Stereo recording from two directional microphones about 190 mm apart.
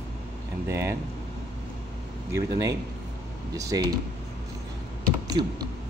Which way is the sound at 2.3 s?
20° right (ahead or behind).